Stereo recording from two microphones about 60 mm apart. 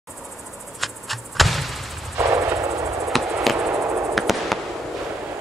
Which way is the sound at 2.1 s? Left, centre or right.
Right.